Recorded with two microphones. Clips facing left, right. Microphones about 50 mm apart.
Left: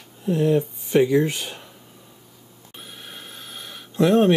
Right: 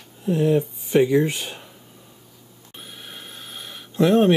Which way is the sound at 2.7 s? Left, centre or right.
Centre.